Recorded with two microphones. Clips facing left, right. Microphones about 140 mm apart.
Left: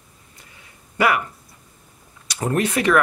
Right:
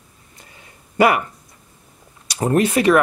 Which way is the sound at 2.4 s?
30° right (ahead or behind).